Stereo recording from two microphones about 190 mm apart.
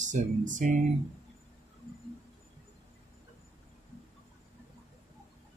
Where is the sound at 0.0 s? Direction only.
40° right (ahead or behind).